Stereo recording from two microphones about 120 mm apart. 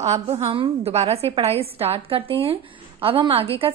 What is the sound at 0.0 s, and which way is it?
A woman's voice, 65° right (ahead or behind).